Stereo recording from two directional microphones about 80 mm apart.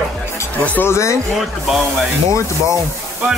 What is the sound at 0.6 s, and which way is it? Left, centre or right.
Speech, centre.